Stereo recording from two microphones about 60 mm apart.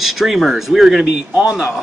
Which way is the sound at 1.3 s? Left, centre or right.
Centre.